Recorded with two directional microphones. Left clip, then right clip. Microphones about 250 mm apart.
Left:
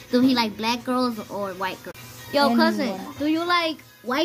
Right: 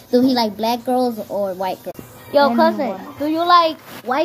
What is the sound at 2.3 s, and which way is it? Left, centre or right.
A child's voice, centre.